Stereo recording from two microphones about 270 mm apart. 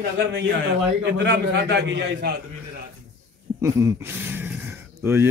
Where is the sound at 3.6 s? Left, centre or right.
Centre.